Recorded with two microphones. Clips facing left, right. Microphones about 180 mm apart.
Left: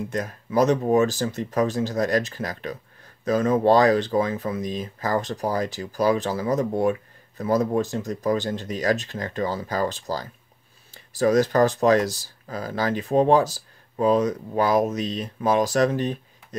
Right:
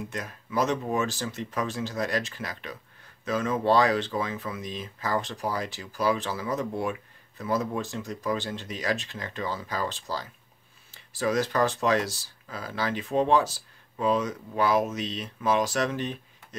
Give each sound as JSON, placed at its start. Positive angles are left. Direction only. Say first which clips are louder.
{"t": 0.1, "sound": "speech", "louder": "left 9 dB", "side_deg": 40}